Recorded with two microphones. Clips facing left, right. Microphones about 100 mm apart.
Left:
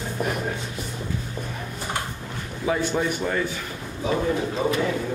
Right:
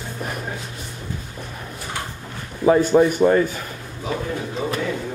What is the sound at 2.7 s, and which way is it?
Speech, 45° right (ahead or behind).